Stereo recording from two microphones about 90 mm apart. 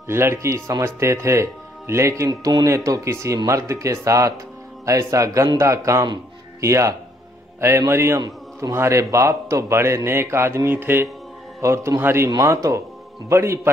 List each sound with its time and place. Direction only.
0.0 s a man's voice: 30° right (ahead or behind)
13.3 s speech: 30° right (ahead or behind)